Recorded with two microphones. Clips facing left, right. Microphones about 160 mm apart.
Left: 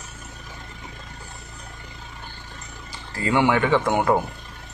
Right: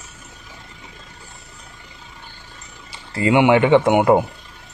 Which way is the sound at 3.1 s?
20° right (ahead or behind).